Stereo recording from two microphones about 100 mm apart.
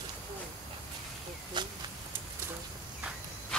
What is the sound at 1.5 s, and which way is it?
Speech, 50° right (ahead or behind).